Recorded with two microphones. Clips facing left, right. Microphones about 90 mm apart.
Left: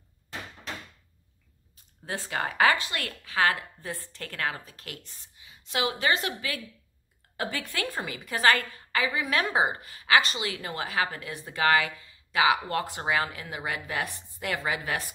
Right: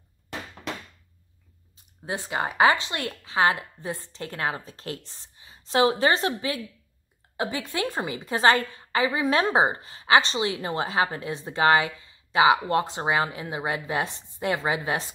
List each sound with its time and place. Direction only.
2.0 s a woman's voice: 20° right (ahead or behind)